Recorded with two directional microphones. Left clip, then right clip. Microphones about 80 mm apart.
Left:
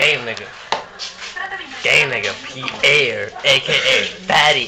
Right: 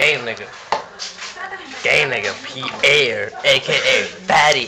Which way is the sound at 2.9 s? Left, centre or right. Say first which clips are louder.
Even; centre.